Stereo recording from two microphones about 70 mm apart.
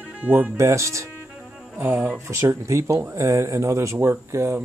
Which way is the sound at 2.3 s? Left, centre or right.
Right.